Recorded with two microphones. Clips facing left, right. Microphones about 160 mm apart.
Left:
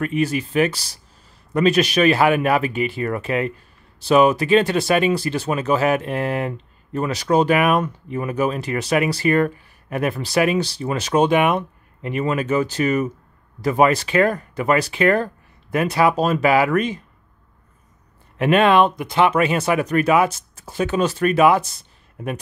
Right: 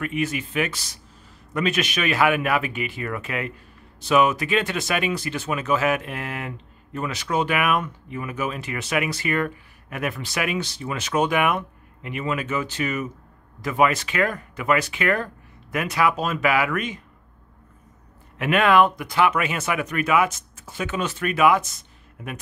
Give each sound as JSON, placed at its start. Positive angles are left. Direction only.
{"t": 0.0, "sound": "speech", "side_deg": 35}
{"t": 18.4, "sound": "speech", "side_deg": 30}